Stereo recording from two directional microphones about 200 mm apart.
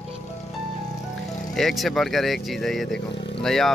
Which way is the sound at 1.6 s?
Centre (ahead or behind).